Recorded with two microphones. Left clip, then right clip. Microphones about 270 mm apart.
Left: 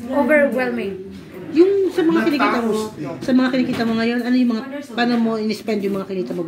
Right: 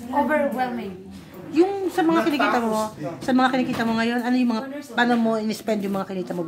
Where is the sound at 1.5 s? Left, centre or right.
Centre.